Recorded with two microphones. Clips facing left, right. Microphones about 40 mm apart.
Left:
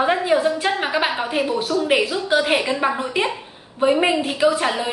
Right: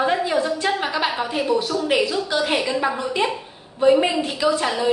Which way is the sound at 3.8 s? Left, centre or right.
Left.